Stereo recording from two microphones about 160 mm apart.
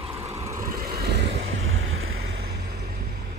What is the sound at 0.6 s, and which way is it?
Vehicle, 70° right (ahead or behind).